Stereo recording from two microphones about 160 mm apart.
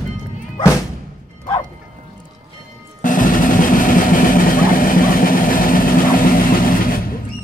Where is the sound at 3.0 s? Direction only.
55° left (ahead or behind).